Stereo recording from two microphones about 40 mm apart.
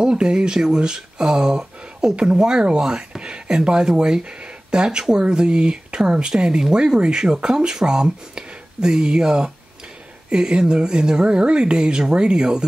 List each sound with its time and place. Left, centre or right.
0.0 s speech: right